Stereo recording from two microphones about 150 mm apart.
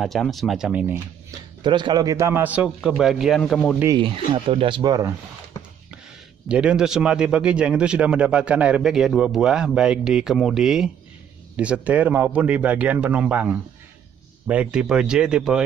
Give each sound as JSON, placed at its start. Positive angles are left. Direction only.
{"t": 0.0, "sound": "speech", "side_deg": 0}
{"t": 1.6, "sound": "a man's voice", "side_deg": -30}
{"t": 3.9, "sound": "speech", "side_deg": -35}
{"t": 6.5, "sound": "speech", "side_deg": -5}